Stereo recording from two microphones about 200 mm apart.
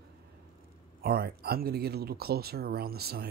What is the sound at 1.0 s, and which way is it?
Speech, 50° right (ahead or behind).